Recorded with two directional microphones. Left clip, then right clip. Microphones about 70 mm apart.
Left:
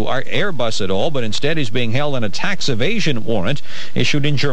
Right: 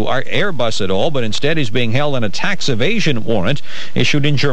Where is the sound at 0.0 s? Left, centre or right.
Left.